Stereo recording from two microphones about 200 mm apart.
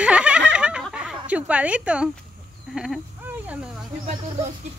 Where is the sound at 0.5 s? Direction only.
5° right (ahead or behind).